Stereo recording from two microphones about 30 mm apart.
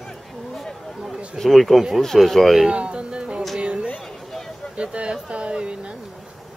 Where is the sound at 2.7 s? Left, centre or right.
Right.